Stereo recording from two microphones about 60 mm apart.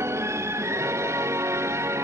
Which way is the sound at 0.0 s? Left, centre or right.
Right.